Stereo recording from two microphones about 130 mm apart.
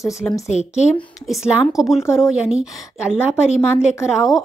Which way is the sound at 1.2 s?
Centre (ahead or behind).